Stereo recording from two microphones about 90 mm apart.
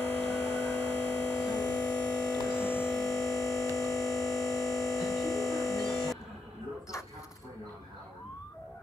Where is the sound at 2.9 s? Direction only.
5° left (ahead or behind).